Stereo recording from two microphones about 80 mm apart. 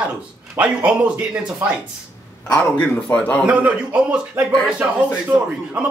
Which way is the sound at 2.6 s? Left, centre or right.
Centre.